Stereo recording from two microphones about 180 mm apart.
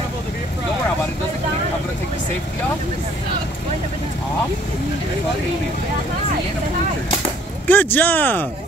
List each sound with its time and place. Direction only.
7.6 s speech: 10° left (ahead or behind)